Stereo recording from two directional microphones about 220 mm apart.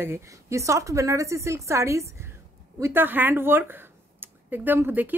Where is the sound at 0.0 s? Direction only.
10° right (ahead or behind).